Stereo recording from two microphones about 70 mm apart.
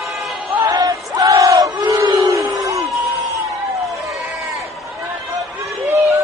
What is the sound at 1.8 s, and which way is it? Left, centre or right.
Crowd, right.